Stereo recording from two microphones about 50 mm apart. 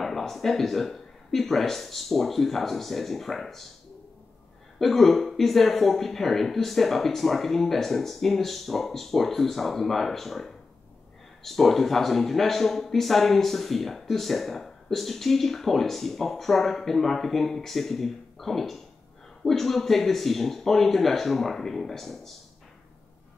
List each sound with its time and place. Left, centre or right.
0.0 s speech: centre
4.7 s speech: centre